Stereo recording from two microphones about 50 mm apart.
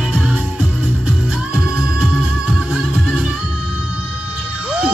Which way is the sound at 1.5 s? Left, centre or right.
Centre.